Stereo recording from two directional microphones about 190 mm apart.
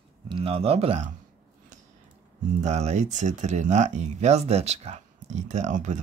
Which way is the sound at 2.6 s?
35° right (ahead or behind).